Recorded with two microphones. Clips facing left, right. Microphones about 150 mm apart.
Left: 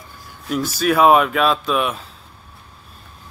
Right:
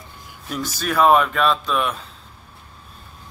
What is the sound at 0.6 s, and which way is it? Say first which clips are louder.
Speech: left 4 dB; 10° left (ahead or behind).